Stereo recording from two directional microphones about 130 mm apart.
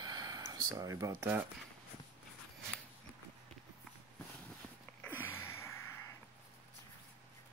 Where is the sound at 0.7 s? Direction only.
25° right (ahead or behind).